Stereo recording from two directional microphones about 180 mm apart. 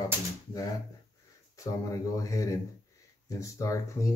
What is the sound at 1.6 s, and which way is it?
Speech, 20° left (ahead or behind).